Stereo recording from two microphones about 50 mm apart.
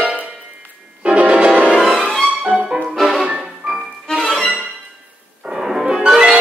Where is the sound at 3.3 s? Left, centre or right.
Right.